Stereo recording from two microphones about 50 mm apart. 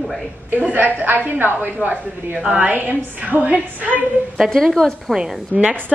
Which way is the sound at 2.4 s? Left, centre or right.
Right.